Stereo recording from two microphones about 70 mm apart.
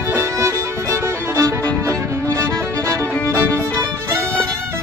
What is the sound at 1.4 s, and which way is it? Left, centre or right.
Music, right.